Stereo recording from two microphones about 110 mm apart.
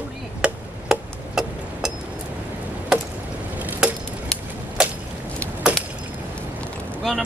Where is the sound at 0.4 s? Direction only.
5° right (ahead or behind).